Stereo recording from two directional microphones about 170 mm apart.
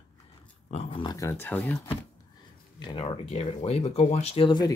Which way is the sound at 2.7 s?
25° left (ahead or behind).